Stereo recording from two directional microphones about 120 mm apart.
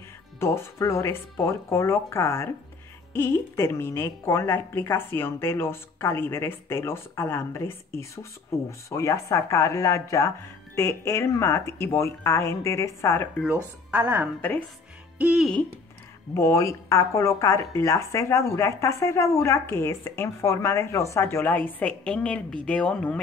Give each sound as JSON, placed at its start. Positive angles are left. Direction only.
{"t": 0.4, "sound": "speech", "side_deg": 20}
{"t": 13.8, "sound": "a woman's voice", "side_deg": -15}
{"t": 16.3, "sound": "speech", "side_deg": 25}